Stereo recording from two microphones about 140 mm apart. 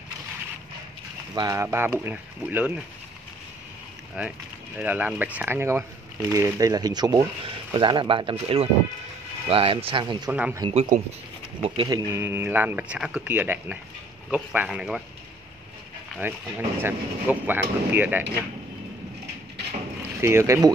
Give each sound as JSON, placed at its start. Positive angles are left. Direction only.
{"t": 1.3, "sound": "speech", "side_deg": -25}
{"t": 4.2, "sound": "speech", "side_deg": -10}
{"t": 10.7, "sound": "speech", "side_deg": -50}
{"t": 11.6, "sound": "speech", "side_deg": -40}
{"t": 12.1, "sound": "speech", "side_deg": -15}
{"t": 16.2, "sound": "speech", "side_deg": -15}
{"t": 20.2, "sound": "speech", "side_deg": -20}